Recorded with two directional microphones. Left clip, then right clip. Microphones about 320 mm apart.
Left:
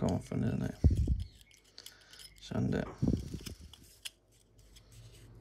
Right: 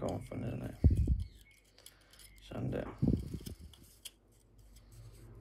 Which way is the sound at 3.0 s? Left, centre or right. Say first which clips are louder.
Even; right.